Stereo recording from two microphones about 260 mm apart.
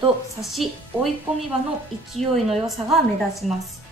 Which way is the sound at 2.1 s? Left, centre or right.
Centre.